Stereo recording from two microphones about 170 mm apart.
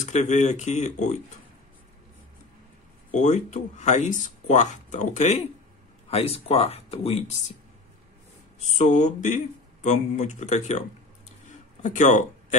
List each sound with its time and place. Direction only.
0.0 s speech: 45° left (ahead or behind)
3.2 s speech: 45° left (ahead or behind)
8.7 s speech: 45° left (ahead or behind)
11.4 s a sound: 45° left (ahead or behind)